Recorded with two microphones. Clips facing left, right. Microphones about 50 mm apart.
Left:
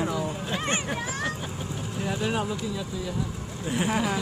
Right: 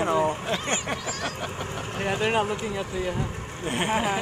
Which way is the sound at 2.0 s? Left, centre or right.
Right.